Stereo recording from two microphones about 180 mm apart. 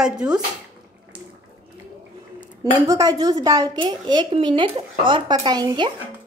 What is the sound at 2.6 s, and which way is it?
Speech, 20° right (ahead or behind).